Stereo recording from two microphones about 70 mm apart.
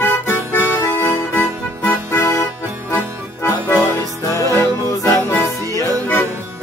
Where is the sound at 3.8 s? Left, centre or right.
Left.